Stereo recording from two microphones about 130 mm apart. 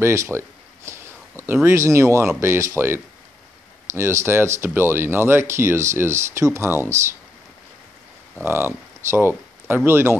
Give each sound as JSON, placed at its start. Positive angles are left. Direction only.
{"t": 0.0, "sound": "speech", "side_deg": -20}
{"t": 8.5, "sound": "speech", "side_deg": -20}